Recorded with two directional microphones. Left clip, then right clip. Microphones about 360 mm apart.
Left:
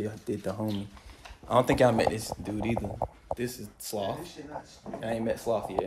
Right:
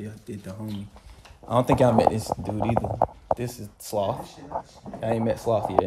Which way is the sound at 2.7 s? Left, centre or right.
Right.